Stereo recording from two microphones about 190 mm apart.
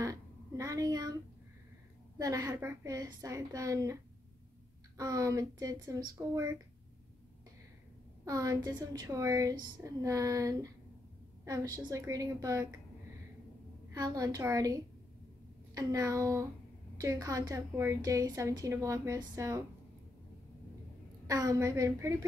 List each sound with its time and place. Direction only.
0.0 s a sound: 15° right (ahead or behind)
2.1 s a woman's voice: 15° right (ahead or behind)
8.3 s a woman's voice: 20° right (ahead or behind)
13.9 s a woman's voice: 20° right (ahead or behind)
21.3 s a woman's voice: 20° right (ahead or behind)